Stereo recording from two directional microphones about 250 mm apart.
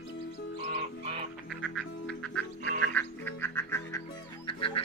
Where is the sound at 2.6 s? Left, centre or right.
Right.